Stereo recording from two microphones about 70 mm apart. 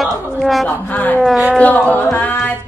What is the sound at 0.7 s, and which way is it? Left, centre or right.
Speech, left.